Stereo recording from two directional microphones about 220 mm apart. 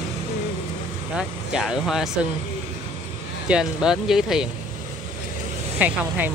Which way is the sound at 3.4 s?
5° right (ahead or behind).